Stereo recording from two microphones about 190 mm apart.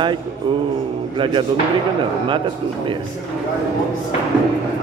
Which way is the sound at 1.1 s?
25° right (ahead or behind).